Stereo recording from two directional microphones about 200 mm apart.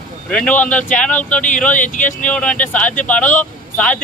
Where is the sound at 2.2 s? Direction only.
5° left (ahead or behind).